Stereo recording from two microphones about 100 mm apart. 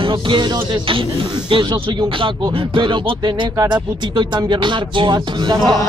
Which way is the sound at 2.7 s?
50° right (ahead or behind).